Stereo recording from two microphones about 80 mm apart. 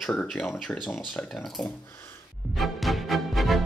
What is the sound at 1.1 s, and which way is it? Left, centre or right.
Speech, centre.